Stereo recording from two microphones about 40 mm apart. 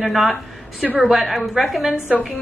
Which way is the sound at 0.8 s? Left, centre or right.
Centre.